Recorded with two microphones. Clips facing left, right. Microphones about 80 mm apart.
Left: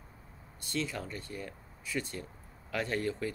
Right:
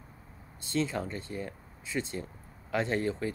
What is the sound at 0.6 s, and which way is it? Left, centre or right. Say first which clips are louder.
A woman's voice: right 5 dB; right.